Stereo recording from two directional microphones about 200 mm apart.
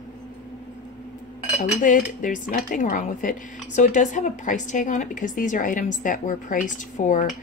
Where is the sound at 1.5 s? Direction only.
40° left (ahead or behind).